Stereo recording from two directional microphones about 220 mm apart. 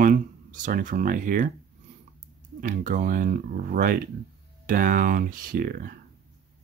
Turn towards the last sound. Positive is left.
turn(degrees=-40)  # may be behind; listen again after turning